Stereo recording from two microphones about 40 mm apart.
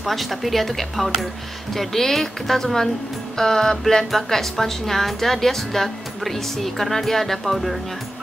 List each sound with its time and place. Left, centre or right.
0.0 s a woman's voice: centre